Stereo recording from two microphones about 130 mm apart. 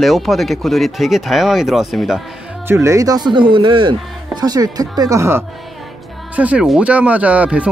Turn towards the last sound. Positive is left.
turn(degrees=-10)  # may be behind; listen again after turning